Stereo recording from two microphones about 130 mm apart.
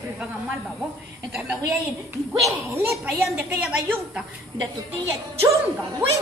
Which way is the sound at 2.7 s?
15° right (ahead or behind).